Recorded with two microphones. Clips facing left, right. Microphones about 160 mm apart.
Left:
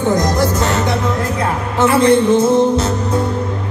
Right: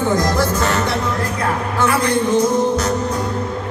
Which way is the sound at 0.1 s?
20° left (ahead or behind).